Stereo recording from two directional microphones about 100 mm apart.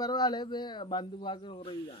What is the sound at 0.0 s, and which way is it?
Speech, 45° left (ahead or behind).